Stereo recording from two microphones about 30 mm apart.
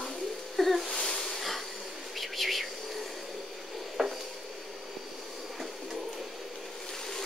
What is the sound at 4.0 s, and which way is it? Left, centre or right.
Dishes, centre.